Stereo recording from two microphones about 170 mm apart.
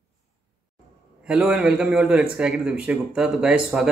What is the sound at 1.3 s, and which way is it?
Speech, 5° right (ahead or behind).